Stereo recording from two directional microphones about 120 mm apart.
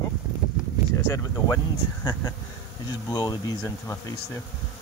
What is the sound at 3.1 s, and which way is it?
Speech, 30° left (ahead or behind).